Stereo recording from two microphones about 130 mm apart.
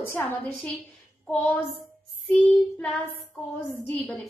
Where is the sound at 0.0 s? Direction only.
15° left (ahead or behind).